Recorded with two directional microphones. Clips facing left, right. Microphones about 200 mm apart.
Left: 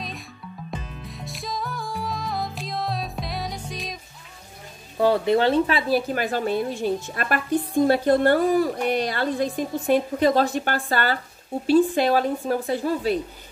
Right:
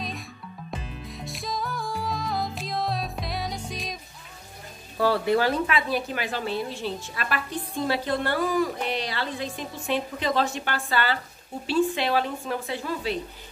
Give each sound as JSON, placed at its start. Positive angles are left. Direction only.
{"t": 1.2, "sound": "music", "side_deg": 0}
{"t": 4.9, "sound": "speech", "side_deg": 20}
{"t": 6.1, "sound": "a woman's voice", "side_deg": 45}